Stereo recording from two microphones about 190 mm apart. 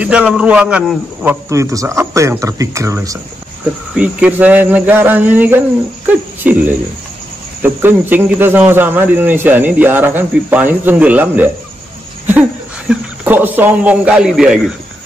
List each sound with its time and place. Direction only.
0.0 s speech: 5° right (ahead or behind)
6.0 s a sound: 10° right (ahead or behind)
7.6 s speech: 10° right (ahead or behind)